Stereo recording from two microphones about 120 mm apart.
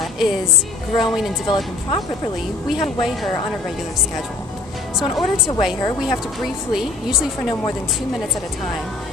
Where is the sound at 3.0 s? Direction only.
Centre (ahead or behind).